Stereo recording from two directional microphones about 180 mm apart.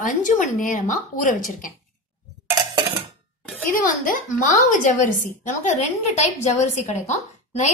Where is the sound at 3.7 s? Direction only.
50° left (ahead or behind).